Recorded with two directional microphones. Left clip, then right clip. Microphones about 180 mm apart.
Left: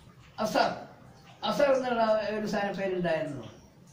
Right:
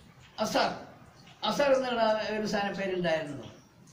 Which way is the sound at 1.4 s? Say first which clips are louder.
Left 1 dB; 10° right (ahead or behind).